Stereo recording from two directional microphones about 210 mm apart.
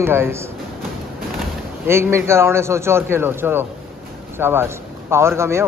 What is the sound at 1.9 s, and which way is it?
A man's voice, 10° right (ahead or behind).